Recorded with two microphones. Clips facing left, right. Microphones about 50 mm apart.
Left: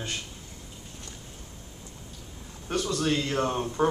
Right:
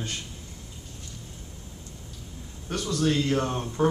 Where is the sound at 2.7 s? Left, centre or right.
Centre.